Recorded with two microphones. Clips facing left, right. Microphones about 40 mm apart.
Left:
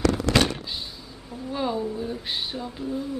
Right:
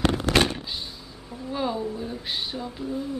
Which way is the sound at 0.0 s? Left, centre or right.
Right.